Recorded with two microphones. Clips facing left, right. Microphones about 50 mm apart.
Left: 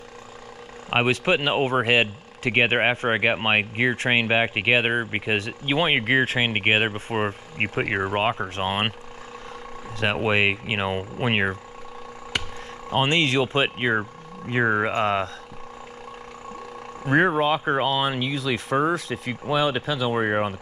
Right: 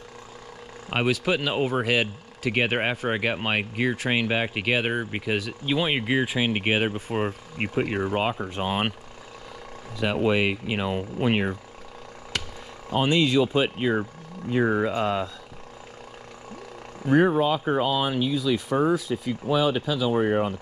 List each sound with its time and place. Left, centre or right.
0.8 s speech: left
10.1 s speech: left
13.1 s speech: left
13.6 s speech: left
17.1 s speech: left
18.3 s speech: left
19.5 s speech: left